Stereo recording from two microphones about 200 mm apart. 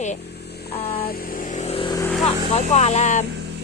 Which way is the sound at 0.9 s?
50° left (ahead or behind).